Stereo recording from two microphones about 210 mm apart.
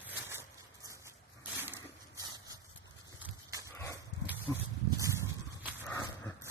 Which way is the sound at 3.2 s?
15° right (ahead or behind).